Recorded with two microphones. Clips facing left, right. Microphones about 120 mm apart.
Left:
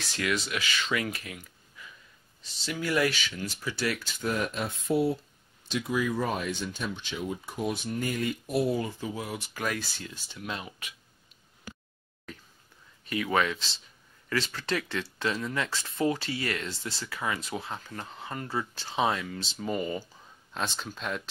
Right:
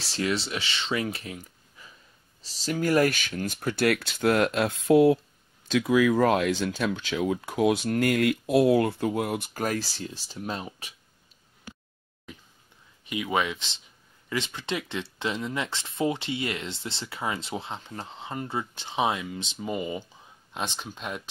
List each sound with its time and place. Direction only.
0.0 s speech: 30° right (ahead or behind)
13.0 s speech: 15° right (ahead or behind)